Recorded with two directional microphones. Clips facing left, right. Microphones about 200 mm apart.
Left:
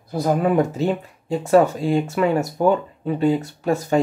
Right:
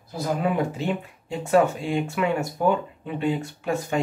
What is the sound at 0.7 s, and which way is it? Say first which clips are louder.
Speech: left 5 dB; 40° left (ahead or behind).